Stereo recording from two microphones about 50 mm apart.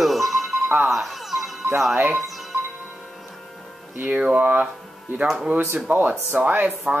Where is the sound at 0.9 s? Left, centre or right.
Centre.